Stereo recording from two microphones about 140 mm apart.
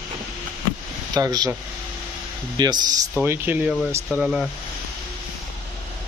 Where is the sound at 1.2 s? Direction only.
25° right (ahead or behind).